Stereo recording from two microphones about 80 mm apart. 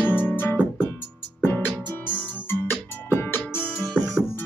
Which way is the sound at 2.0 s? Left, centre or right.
Left.